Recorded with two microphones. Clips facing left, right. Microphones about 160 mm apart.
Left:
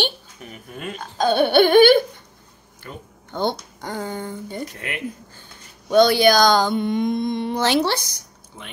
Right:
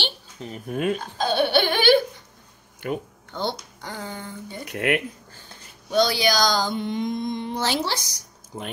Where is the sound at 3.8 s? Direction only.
50° left (ahead or behind).